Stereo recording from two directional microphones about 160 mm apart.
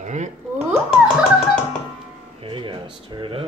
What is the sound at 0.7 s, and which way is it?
Speech, 5° right (ahead or behind).